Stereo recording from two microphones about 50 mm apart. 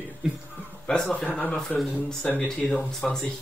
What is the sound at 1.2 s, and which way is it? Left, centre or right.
Speech, left.